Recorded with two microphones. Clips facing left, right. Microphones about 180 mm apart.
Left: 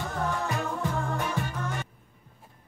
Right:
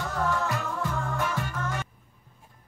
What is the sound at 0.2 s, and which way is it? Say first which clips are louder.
Music: right 2 dB; 20° left (ahead or behind).